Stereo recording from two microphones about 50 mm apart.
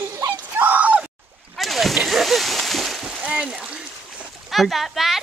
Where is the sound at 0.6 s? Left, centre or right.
Right.